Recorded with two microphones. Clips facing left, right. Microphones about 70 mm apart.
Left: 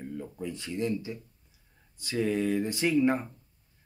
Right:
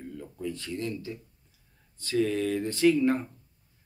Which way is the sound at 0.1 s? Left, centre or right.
Centre.